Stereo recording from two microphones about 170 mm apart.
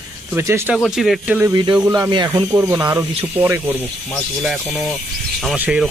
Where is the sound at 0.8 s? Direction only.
Centre (ahead or behind).